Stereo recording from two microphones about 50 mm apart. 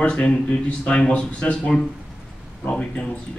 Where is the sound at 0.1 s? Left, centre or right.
Centre.